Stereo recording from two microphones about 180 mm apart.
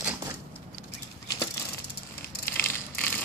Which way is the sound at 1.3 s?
20° left (ahead or behind).